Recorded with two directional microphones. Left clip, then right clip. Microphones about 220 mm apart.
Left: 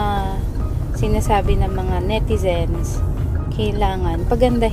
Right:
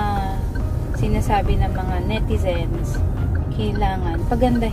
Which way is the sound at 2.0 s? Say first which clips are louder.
Left 5 dB; 30° left (ahead or behind).